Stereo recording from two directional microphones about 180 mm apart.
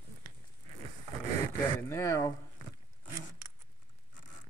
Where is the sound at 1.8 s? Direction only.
15° left (ahead or behind).